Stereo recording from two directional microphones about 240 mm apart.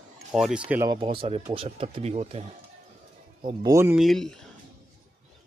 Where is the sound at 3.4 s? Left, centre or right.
Centre.